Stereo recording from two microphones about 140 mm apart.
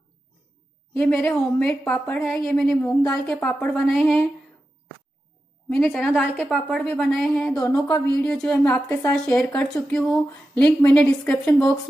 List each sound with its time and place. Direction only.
0.9 s a woman's voice: 5° left (ahead or behind)
2.8 s a woman's voice: 15° left (ahead or behind)
5.7 s a woman's voice: centre (ahead or behind)
7.7 s speech: 25° left (ahead or behind)
8.2 s a woman's voice: 5° left (ahead or behind)